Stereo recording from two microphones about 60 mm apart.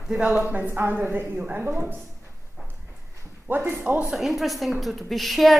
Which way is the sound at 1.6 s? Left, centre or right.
Right.